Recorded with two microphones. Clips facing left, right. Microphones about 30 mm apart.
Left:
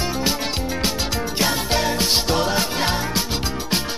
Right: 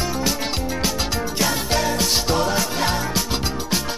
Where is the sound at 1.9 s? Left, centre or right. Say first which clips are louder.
Even; left.